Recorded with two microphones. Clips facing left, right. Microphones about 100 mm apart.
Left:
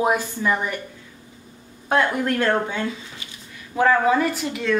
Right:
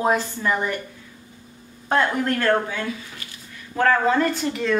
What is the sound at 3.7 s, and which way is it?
A woman's voice, 10° left (ahead or behind).